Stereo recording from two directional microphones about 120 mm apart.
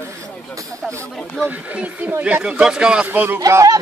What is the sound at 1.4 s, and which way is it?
Speech, 15° right (ahead or behind).